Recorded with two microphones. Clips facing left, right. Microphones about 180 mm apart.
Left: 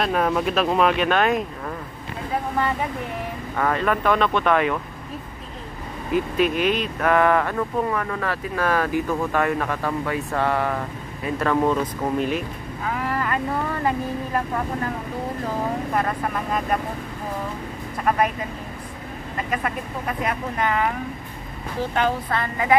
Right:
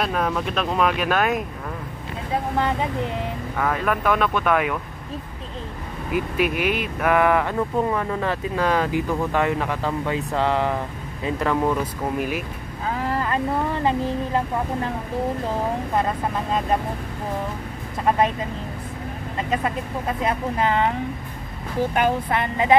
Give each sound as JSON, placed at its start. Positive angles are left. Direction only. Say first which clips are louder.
{"t": 0.0, "sound": "speech", "louder": "left 2 dB", "side_deg": 5}
{"t": 3.5, "sound": "speech", "louder": "left 2 dB", "side_deg": -5}
{"t": 6.1, "sound": "speech", "louder": "left 2 dB", "side_deg": -10}
{"t": 12.8, "sound": "boat", "louder": "right 1 dB", "side_deg": -25}
{"t": 13.8, "sound": "speech", "louder": "right 2 dB", "side_deg": -25}
{"t": 15.9, "sound": "speech", "louder": "right 1 dB", "side_deg": -25}
{"t": 18.0, "sound": "speech", "louder": "right 1 dB", "side_deg": -25}
{"t": 19.3, "sound": "speech", "louder": "right 2 dB", "side_deg": -25}
{"t": 21.9, "sound": "speech", "louder": "even", "side_deg": -15}